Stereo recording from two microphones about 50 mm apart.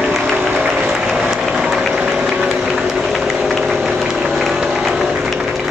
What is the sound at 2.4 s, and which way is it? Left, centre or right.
Run, centre.